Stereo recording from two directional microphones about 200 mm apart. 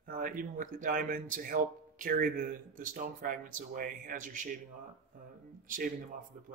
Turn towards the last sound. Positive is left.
turn(degrees=-45)  # may be behind; listen again after turning